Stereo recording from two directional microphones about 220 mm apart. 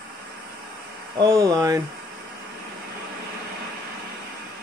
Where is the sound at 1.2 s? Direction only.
15° right (ahead or behind).